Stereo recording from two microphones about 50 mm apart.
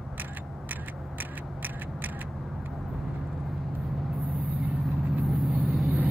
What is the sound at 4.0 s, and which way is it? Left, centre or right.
Vehicle, centre.